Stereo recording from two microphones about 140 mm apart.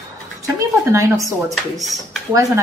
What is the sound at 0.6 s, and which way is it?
Speech, 25° right (ahead or behind).